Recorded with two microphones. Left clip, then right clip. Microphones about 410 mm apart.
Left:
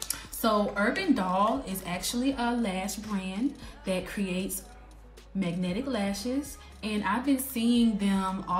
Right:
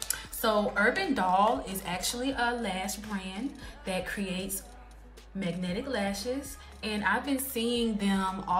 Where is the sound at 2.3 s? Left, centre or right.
Right.